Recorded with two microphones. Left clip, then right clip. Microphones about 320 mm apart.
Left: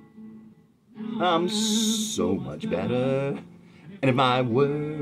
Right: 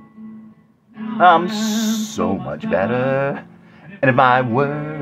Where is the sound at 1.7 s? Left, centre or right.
Right.